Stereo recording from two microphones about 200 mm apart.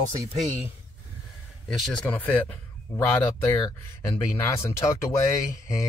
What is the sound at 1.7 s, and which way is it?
A man's voice, 5° left (ahead or behind).